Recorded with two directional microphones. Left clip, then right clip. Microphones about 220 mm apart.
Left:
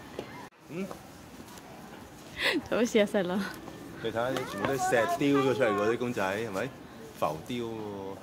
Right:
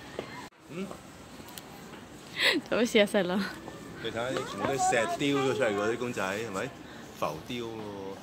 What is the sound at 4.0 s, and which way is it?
Speech, 35° left (ahead or behind).